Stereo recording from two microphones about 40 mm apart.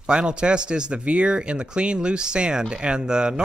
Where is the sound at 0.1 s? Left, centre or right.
Right.